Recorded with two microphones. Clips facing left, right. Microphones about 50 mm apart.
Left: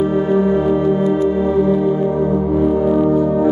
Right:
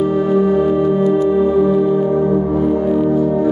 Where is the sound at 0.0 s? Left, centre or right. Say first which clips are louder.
Right 1 dB; centre.